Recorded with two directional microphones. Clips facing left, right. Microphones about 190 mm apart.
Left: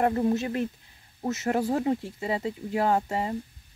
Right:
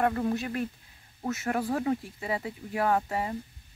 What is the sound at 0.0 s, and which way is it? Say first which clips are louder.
Speech: left 3 dB; 25° left (ahead or behind).